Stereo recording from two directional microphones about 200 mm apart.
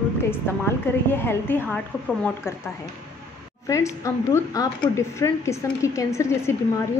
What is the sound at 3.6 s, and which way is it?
A woman's voice, 15° left (ahead or behind).